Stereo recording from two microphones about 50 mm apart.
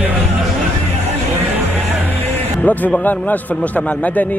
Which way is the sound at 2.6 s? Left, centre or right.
Left.